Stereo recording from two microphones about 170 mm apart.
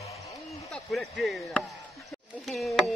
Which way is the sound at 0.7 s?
Centre (ahead or behind).